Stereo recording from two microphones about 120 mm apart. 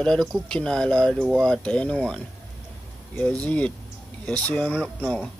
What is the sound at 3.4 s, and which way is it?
Speech, 10° left (ahead or behind).